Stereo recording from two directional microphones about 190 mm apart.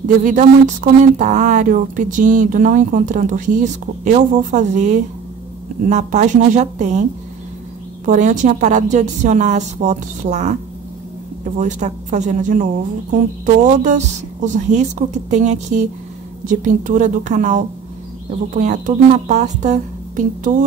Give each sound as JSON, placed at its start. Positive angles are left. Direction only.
{"t": 0.0, "sound": "speech", "side_deg": -40}
{"t": 13.7, "sound": "a woman's voice", "side_deg": -40}